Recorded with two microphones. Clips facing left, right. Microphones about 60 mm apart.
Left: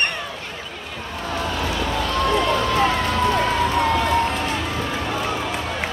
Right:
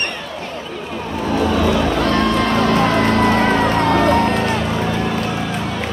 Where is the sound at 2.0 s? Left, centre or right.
Right.